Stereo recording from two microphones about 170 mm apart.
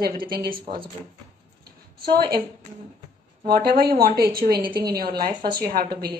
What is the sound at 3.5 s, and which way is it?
Speech, 60° right (ahead or behind).